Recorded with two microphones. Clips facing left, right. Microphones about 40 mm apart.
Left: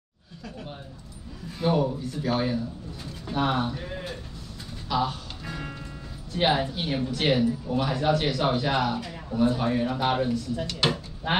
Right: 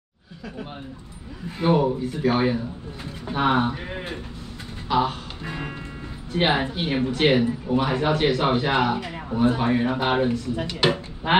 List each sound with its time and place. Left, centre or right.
1.6 s speech: right
4.8 s music: right
6.3 s speech: right
10.7 s speech: centre
11.3 s speech: right